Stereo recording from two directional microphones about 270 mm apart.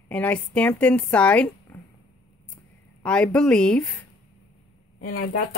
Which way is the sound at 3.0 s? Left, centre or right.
Centre.